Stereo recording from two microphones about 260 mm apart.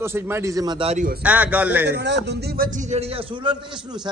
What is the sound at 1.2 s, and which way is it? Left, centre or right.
Speech, centre.